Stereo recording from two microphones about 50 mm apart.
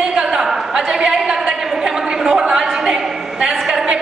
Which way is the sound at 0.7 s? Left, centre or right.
Centre.